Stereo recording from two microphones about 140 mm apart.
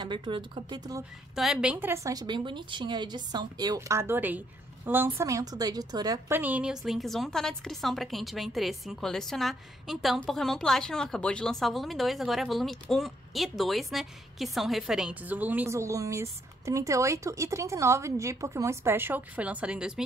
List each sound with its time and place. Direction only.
0.0 s a woman's voice: 35° right (ahead or behind)
1.3 s a woman's voice: 5° right (ahead or behind)
2.1 s a woman's voice: 30° right (ahead or behind)
6.3 s a woman's voice: 10° right (ahead or behind)